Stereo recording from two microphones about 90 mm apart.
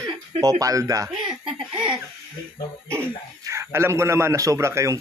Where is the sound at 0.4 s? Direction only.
40° right (ahead or behind).